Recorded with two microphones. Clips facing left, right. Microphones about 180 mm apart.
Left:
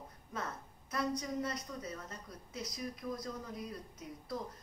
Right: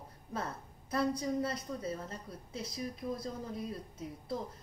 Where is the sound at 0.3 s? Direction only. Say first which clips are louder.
Right 3 dB; 30° right (ahead or behind).